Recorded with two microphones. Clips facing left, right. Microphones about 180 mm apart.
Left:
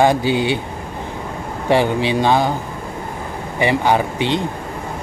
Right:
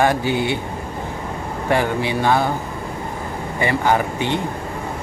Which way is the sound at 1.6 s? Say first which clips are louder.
Left 4 dB; 20° left (ahead or behind).